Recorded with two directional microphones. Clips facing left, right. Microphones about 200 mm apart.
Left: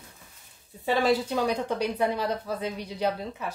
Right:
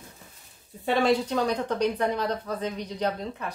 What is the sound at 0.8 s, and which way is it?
Speech, centre (ahead or behind).